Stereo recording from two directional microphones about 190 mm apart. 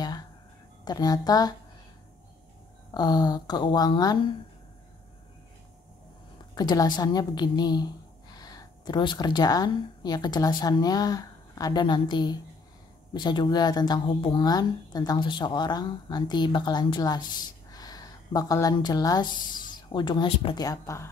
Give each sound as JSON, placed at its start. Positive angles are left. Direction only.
{"t": 0.8, "sound": "speech", "side_deg": 20}
{"t": 2.9, "sound": "speech", "side_deg": 20}
{"t": 6.5, "sound": "a woman's voice", "side_deg": 20}